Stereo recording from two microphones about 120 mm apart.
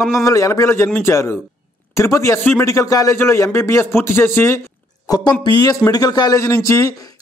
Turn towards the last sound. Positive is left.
turn(degrees=25)  # may be behind; listen again after turning